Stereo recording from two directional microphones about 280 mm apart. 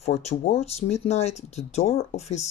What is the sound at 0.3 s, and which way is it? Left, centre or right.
Speech, left.